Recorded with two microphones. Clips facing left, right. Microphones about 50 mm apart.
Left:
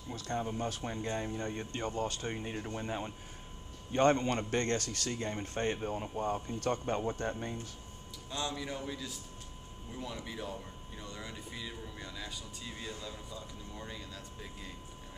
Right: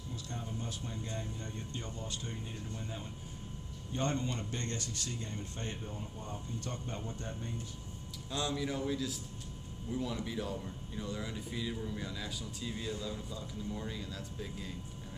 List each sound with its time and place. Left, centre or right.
0.1 s speech: left
8.5 s a man's voice: centre